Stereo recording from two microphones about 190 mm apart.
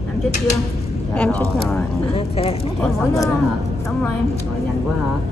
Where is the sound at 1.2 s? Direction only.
5° left (ahead or behind).